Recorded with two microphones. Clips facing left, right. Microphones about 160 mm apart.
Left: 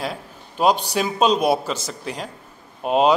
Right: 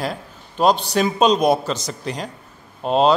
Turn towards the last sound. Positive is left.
turn(degrees=10)  # may be behind; listen again after turning